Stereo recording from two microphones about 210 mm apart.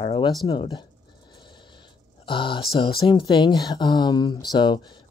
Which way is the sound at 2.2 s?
25° left (ahead or behind).